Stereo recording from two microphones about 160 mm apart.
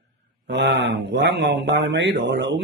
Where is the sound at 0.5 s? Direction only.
90° right.